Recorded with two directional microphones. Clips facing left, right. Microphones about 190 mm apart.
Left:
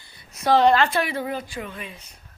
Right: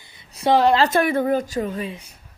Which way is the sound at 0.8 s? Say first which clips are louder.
Right 5 dB; 45° right (ahead or behind).